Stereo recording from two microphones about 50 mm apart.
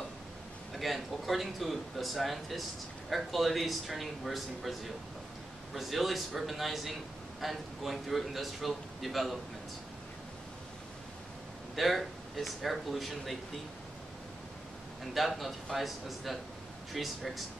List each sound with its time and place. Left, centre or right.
0.7 s a man's voice: centre
11.7 s a man's voice: centre
15.1 s a man's voice: centre